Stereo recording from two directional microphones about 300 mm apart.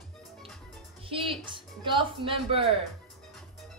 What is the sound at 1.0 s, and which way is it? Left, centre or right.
Speech, centre.